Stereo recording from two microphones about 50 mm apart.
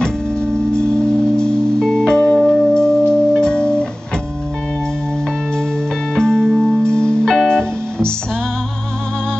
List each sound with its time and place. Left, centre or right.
1.3 s music: centre
1.8 s music: centre
2.0 s music: centre
6.1 s music: centre
6.9 s music: centre